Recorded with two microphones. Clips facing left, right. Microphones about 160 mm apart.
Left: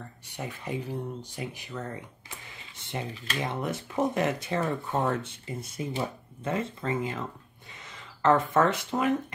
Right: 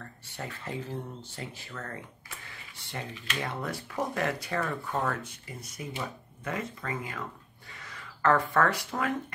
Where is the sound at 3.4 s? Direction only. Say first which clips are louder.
Left 3 dB; 20° left (ahead or behind).